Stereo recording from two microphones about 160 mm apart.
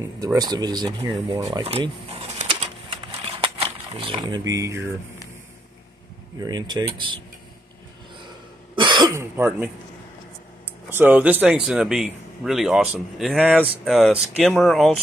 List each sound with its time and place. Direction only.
0.0 s speech: 20° right (ahead or behind)
1.6 s speech: 35° right (ahead or behind)
2.9 s a sound: 35° right (ahead or behind); by 4.8 s 20° right (ahead or behind)
6.4 s speech: 25° right (ahead or behind)
8.7 s cough: 30° right (ahead or behind)
9.1 s speech: 15° right (ahead or behind)
10.9 s a man's voice: 10° right (ahead or behind)